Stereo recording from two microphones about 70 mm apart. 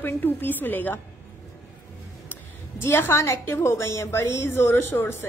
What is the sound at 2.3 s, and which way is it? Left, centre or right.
A woman's voice, left.